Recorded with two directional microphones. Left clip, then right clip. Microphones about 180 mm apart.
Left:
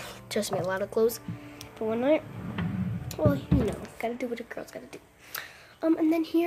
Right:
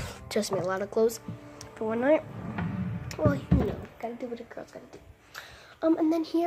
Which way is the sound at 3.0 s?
15° left (ahead or behind).